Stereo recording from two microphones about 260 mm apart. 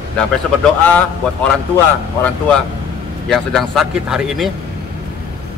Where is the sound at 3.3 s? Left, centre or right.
Centre.